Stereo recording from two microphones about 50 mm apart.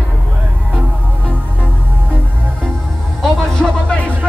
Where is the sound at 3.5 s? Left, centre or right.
Centre.